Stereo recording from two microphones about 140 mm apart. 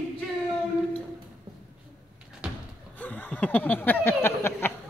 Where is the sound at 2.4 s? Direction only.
5° right (ahead or behind).